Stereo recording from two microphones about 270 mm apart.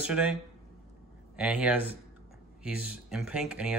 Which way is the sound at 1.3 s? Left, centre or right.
Centre.